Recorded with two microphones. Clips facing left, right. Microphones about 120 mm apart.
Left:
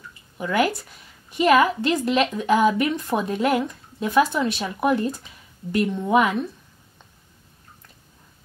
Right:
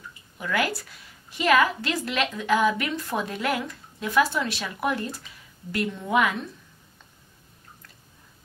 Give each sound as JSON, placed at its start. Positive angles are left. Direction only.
{"t": 0.4, "sound": "a woman's voice", "side_deg": 25}